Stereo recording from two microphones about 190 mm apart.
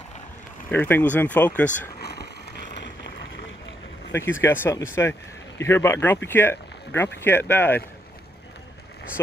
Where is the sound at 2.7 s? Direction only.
70° left (ahead or behind).